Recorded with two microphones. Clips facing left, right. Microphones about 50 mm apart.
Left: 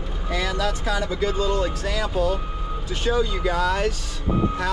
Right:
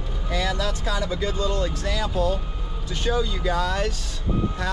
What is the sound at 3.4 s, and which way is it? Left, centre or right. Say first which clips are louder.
Speech: left 2 dB; left.